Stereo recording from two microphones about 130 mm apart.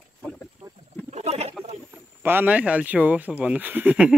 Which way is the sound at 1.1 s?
55° right (ahead or behind).